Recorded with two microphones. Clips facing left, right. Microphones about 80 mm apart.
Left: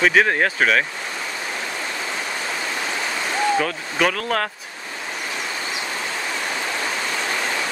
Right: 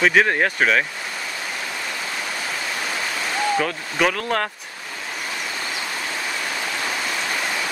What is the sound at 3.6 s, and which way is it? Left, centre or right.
Speech, centre.